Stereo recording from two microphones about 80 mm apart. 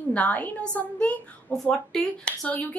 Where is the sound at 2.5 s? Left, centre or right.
Centre.